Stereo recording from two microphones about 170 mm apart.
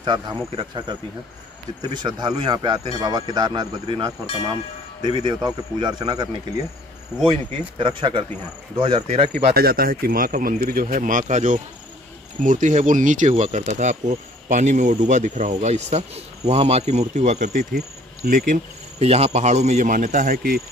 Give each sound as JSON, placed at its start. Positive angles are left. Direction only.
{"t": 0.0, "sound": "speech", "side_deg": -25}
{"t": 7.8, "sound": "speech", "side_deg": -30}
{"t": 9.5, "sound": "speech", "side_deg": -65}